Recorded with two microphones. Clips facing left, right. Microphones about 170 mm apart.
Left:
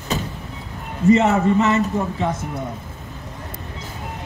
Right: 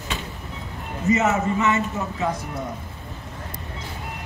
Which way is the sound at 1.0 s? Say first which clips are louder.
Left 6 dB; 35° left (ahead or behind).